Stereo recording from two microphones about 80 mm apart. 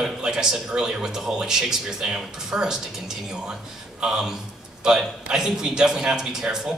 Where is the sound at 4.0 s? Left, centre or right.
Centre.